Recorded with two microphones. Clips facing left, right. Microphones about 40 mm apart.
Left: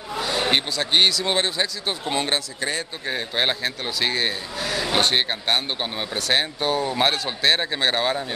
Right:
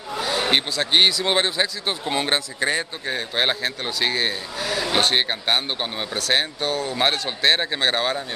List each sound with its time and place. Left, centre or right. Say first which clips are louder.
0.1 s speech: right 1 dB; centre
2.3 s a man's voice: right 3 dB; right
3.1 s a man's voice: even; centre
6.7 s speech: left 2 dB; centre
7.0 s a man's voice: even; centre